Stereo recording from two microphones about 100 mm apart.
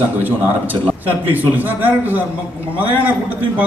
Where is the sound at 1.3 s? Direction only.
15° right (ahead or behind).